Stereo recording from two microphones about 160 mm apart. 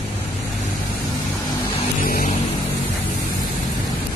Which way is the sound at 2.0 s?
60° left (ahead or behind).